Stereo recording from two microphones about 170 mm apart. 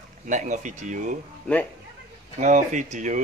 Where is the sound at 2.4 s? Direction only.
45° right (ahead or behind).